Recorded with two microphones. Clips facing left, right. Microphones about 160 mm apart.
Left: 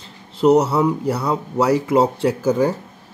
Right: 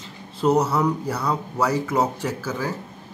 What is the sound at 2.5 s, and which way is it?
Speech, 55° left (ahead or behind).